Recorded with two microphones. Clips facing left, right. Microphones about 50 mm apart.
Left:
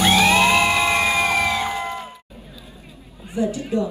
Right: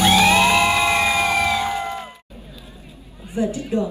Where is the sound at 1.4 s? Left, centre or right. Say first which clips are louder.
Right 1 dB; left.